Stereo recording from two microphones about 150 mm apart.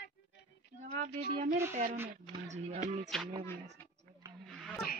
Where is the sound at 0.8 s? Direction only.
55° right (ahead or behind).